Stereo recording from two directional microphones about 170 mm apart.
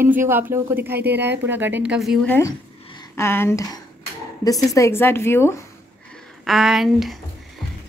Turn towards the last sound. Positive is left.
turn(degrees=0)  # may be behind; listen again after turning